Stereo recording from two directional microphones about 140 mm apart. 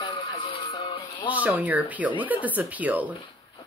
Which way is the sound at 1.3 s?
10° right (ahead or behind).